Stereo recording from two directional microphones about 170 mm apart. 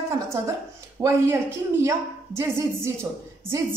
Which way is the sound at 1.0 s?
20° right (ahead or behind).